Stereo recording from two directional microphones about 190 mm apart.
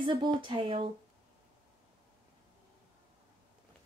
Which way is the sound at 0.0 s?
25° right (ahead or behind).